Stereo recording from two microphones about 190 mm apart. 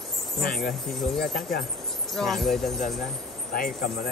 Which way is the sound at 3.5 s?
50° left (ahead or behind).